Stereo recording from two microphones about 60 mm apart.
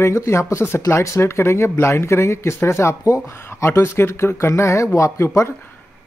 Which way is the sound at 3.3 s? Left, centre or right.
Left.